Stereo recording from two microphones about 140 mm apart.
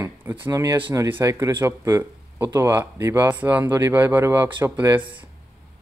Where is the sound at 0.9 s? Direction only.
35° right (ahead or behind).